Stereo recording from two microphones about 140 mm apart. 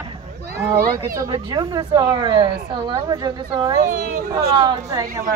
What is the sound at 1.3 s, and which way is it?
Speech, 30° right (ahead or behind).